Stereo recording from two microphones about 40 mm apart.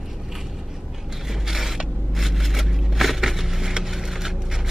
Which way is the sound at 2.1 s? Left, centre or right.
Centre.